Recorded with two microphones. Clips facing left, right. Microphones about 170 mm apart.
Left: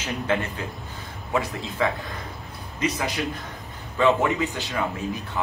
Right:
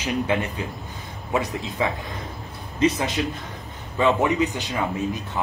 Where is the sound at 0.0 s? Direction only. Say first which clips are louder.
Right 2 dB; 15° right (ahead or behind).